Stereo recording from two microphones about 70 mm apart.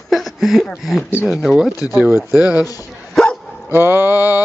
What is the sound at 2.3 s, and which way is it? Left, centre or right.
Speech, left.